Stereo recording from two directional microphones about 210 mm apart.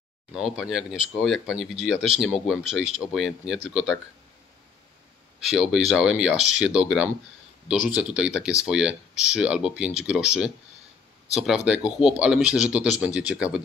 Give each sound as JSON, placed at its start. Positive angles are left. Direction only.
{"t": 0.3, "sound": "speech", "side_deg": 0}
{"t": 5.5, "sound": "speech", "side_deg": 0}